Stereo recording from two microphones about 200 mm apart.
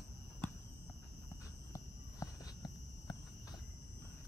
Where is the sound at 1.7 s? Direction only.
15° left (ahead or behind).